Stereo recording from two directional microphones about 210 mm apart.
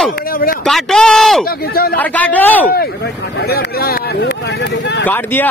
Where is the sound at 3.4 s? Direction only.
50° left (ahead or behind).